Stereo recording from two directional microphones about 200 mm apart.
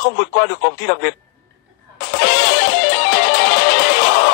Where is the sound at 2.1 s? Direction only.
55° left (ahead or behind).